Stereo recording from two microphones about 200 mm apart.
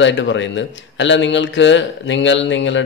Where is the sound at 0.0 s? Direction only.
65° left (ahead or behind).